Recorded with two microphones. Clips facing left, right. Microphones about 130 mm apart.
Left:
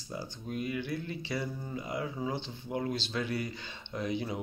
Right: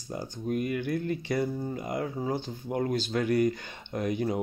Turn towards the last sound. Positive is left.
turn(degrees=-50)  # may be behind; listen again after turning